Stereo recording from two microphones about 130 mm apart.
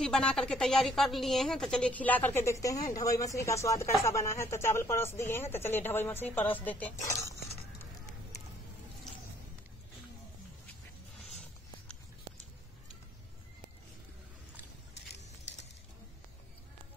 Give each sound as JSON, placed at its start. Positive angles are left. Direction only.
{"t": 0.0, "sound": "a woman's voice", "side_deg": 5}
{"t": 7.1, "sound": "speech", "side_deg": 25}